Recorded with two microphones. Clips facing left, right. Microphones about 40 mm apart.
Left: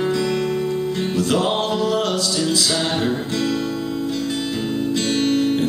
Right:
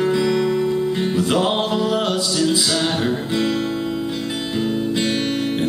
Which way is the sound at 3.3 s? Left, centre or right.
Centre.